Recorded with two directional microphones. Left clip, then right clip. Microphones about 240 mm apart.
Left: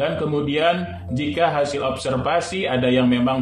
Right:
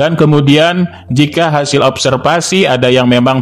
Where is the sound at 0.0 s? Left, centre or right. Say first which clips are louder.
Right 12 dB; right.